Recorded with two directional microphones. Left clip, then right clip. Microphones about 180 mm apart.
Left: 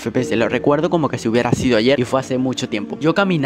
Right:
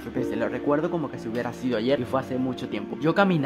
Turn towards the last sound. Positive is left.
turn(degrees=30)  # may be behind; listen again after turning